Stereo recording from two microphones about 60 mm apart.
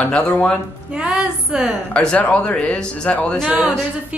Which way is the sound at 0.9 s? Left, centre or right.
Centre.